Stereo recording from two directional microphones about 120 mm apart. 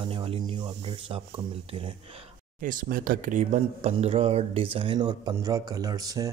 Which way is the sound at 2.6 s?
90° right.